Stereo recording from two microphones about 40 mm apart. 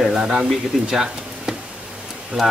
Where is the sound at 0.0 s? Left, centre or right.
Centre.